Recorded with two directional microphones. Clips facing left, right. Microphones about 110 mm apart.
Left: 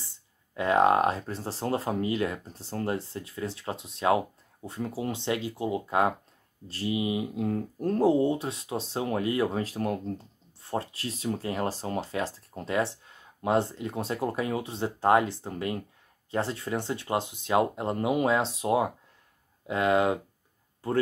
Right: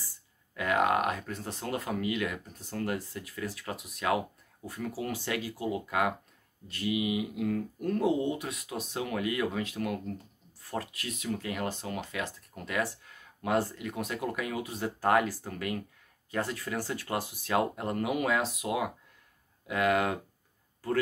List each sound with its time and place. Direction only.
0.0 s speech: 25° left (ahead or behind)